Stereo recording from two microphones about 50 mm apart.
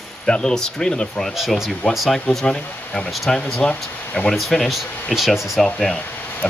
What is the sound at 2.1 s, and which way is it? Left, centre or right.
Speech, centre.